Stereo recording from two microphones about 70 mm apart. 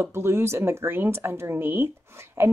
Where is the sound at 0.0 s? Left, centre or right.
Right.